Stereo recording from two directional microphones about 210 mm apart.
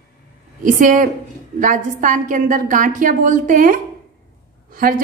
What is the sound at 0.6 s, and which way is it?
A woman's voice, 40° right (ahead or behind).